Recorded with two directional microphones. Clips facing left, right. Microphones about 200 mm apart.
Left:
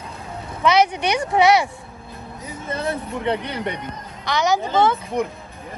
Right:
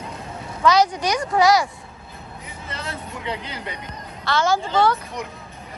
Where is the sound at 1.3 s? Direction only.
25° left (ahead or behind).